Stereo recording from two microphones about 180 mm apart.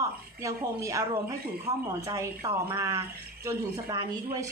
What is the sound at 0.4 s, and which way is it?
Speech, 15° right (ahead or behind).